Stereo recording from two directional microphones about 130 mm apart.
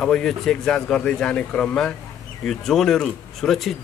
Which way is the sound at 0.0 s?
5° left (ahead or behind).